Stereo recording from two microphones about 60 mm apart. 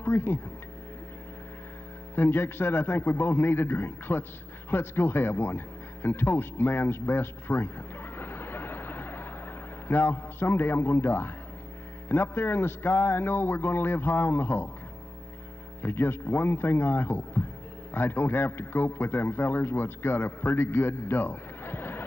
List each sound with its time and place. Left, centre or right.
0.0 s speech: left
2.1 s a man's voice: left
6.0 s a sound: left
9.8 s a man's voice: left
15.8 s a man's voice: left